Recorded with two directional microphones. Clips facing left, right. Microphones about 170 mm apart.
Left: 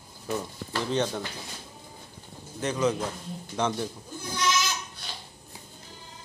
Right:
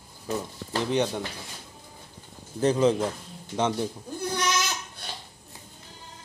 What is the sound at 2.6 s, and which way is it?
Speech, 30° right (ahead or behind).